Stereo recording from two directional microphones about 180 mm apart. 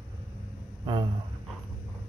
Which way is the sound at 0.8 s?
25° right (ahead or behind).